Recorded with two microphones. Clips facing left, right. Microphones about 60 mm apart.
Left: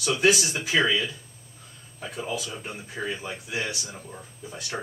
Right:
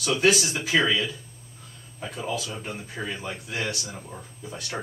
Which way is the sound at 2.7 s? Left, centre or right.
Centre.